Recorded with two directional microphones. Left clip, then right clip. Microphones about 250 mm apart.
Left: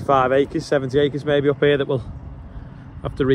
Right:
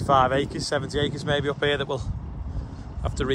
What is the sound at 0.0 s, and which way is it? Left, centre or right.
Speech, centre.